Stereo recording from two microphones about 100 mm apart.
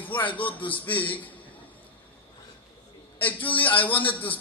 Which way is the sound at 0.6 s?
15° left (ahead or behind).